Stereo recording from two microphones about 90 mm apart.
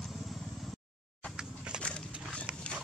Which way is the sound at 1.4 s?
10° right (ahead or behind).